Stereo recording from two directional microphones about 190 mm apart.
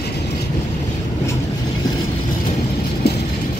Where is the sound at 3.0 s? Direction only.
55° left (ahead or behind).